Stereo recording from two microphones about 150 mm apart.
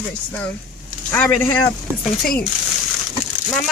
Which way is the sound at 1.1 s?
10° left (ahead or behind).